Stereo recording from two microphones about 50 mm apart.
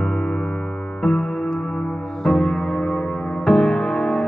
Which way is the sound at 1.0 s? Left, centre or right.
Centre.